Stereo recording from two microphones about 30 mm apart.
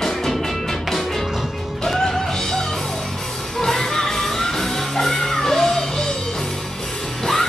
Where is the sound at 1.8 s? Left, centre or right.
Centre.